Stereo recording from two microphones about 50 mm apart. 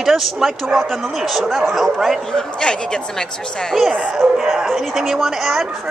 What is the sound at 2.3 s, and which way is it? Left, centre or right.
Speech, centre.